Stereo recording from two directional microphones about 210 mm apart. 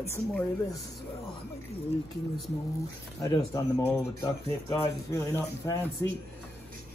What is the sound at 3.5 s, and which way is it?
Speech, 15° left (ahead or behind).